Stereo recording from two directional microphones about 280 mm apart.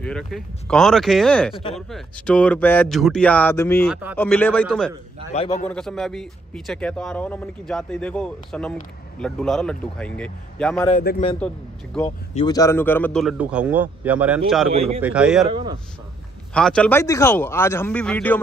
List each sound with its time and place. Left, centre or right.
0.0 s a man's voice: centre
3.9 s a man's voice: centre
5.3 s a man's voice: left
5.7 s a man's voice: centre
10.9 s a man's voice: left
11.3 s a man's voice: centre
14.7 s a man's voice: right
15.0 s a man's voice: centre
15.5 s a man's voice: centre
16.5 s speech: centre